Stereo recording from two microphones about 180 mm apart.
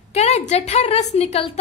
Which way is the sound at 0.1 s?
35° left (ahead or behind).